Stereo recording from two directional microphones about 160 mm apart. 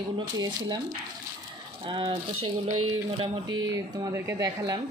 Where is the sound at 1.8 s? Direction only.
30° right (ahead or behind).